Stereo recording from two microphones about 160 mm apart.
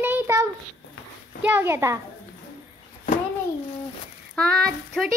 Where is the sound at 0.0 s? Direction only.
15° right (ahead or behind).